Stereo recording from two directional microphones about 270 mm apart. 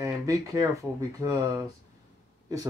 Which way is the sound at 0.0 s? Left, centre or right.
Centre.